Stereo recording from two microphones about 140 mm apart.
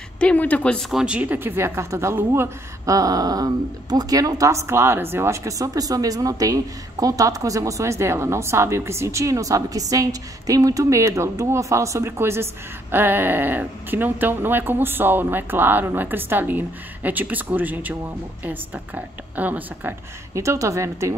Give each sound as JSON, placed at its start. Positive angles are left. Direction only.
{"t": 0.2, "sound": "speech", "side_deg": 10}